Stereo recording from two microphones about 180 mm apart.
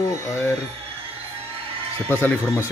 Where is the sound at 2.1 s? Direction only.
15° left (ahead or behind).